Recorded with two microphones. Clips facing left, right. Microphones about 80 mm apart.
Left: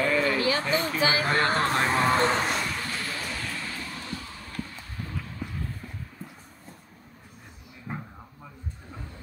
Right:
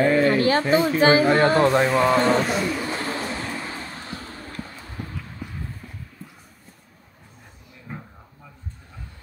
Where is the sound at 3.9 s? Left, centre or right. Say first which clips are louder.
Right 2 dB; right.